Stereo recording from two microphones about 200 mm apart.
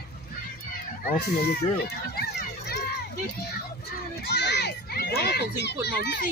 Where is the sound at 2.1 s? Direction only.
50° left (ahead or behind).